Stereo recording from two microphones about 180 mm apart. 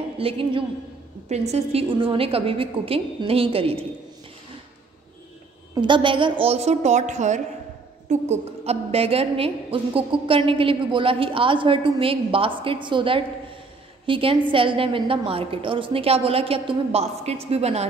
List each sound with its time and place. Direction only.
0.2 s a woman's voice: 30° right (ahead or behind)
5.8 s a woman's voice: 25° right (ahead or behind)